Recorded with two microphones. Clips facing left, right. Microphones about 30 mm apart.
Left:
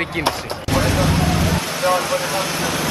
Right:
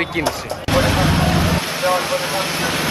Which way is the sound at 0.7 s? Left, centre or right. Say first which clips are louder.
Right 2 dB; right.